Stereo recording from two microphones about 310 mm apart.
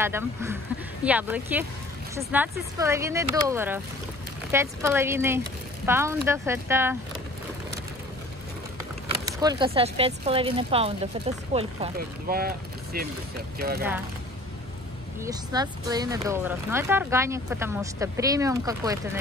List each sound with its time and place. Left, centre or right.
0.0 s speech: centre
9.1 s speech: centre; by 13.8 s right
15.2 s speech: centre